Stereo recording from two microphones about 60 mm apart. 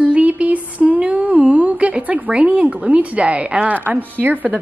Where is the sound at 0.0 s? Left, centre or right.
Right.